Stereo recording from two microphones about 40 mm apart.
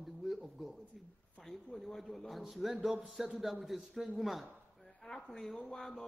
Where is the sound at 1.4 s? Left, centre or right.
Centre.